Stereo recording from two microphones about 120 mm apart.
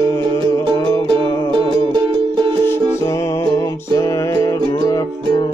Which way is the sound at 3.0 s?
25° left (ahead or behind).